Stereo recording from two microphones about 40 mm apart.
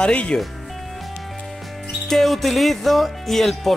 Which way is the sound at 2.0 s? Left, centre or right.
Centre.